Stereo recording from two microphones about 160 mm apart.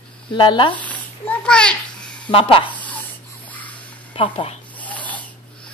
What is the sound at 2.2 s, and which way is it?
Speech, 30° left (ahead or behind).